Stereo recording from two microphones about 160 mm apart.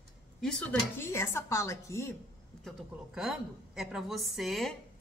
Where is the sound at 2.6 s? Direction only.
5° right (ahead or behind).